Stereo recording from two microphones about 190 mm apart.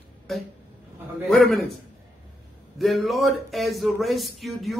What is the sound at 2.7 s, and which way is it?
Speech, centre (ahead or behind).